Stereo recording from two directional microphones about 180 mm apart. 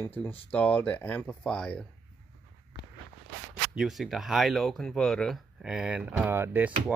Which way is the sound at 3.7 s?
Centre (ahead or behind).